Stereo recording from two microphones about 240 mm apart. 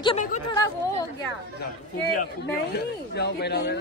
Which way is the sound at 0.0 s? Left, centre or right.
Left.